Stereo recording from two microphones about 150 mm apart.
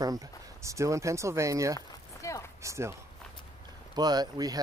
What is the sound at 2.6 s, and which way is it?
Speech, 20° right (ahead or behind).